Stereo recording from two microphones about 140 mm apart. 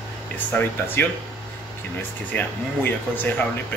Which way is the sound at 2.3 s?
10° left (ahead or behind).